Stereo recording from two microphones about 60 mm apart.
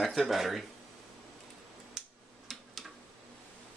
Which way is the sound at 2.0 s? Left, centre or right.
Centre.